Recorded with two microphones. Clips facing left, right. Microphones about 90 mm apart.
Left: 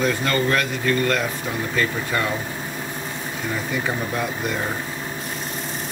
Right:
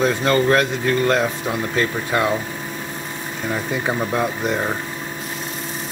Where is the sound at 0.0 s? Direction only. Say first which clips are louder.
Right 4 dB; 25° right (ahead or behind).